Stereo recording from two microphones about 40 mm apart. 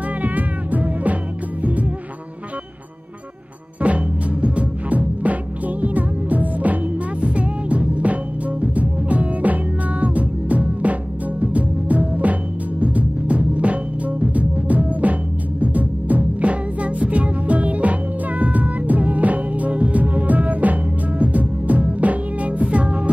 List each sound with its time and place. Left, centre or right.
0.2 s music: right
3.8 s music: right